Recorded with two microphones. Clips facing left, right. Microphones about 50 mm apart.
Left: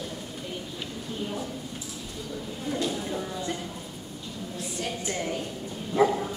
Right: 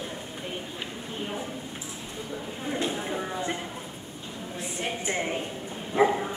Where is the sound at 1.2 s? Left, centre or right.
Right.